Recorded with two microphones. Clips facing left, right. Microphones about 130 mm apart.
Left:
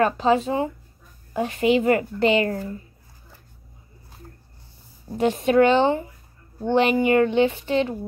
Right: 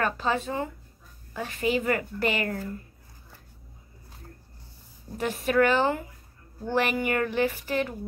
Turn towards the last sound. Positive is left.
turn(degrees=25)  # may be behind; listen again after turning